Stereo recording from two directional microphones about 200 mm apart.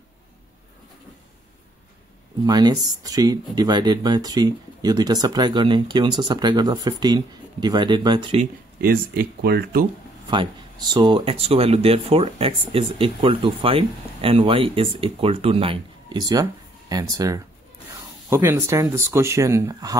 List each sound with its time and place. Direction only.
2.4 s speech: 20° right (ahead or behind)
8.8 s speech: 50° right (ahead or behind)
10.3 s speech: 25° right (ahead or behind)